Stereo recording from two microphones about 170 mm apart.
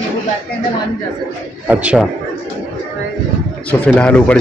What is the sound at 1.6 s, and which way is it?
Speech, 10° right (ahead or behind).